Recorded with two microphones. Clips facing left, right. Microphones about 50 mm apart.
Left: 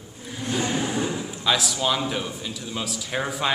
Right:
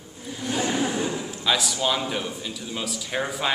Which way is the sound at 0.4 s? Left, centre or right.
Left.